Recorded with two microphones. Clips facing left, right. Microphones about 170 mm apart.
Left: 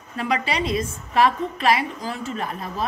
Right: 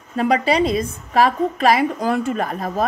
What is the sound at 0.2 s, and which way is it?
A woman's voice, 40° right (ahead or behind).